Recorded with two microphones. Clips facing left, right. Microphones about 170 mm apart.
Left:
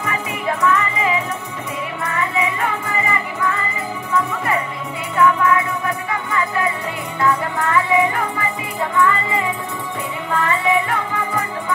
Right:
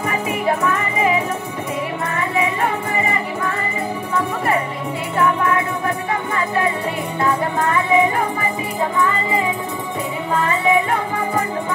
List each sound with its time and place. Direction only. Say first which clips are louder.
0.0 s music: right 3 dB; 40° right (ahead or behind)
5.1 s music: left 2 dB; 40° right (ahead or behind)
7.2 s music: left 1 dB; 25° right (ahead or behind)
10.3 s music: right 1 dB; 25° right (ahead or behind)